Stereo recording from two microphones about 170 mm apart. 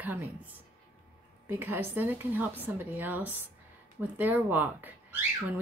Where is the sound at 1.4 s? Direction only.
10° right (ahead or behind).